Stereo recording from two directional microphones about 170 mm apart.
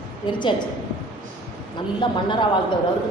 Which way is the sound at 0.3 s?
30° left (ahead or behind).